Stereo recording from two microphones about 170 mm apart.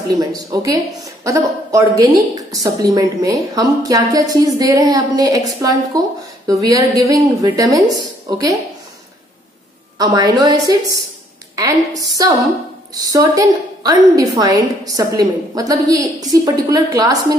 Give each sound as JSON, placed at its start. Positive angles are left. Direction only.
{"t": 0.2, "sound": "a woman's voice", "side_deg": -20}
{"t": 9.9, "sound": "a woman's voice", "side_deg": -20}